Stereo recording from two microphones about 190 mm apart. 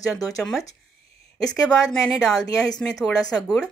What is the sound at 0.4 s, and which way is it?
A woman's voice, centre (ahead or behind).